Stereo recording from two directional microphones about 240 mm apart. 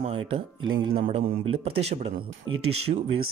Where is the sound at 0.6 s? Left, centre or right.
Right.